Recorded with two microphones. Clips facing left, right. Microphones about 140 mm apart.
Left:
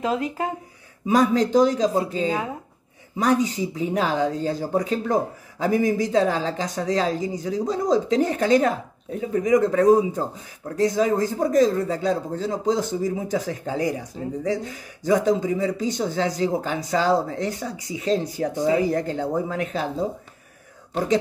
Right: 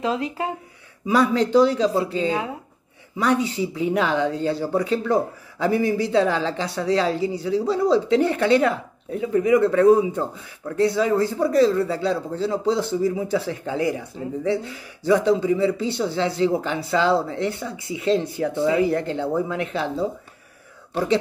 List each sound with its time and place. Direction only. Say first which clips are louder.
0.0 s speech: even; 45° left (ahead or behind)